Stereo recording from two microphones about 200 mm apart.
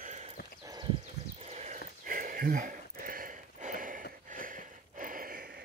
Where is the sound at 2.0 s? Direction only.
40° right (ahead or behind).